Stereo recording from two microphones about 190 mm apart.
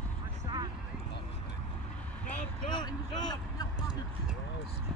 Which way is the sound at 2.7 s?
20° left (ahead or behind).